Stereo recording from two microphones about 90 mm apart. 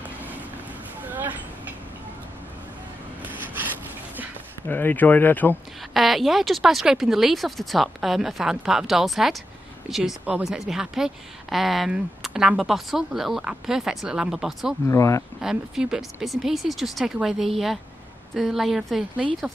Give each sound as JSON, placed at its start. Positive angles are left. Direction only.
{"t": 1.0, "sound": "a sound", "side_deg": -20}
{"t": 3.2, "sound": "rub", "side_deg": -20}
{"t": 4.6, "sound": "speech", "side_deg": 20}
{"t": 5.9, "sound": "speech", "side_deg": 0}
{"t": 14.9, "sound": "speech", "side_deg": 35}
{"t": 15.4, "sound": "speech", "side_deg": -5}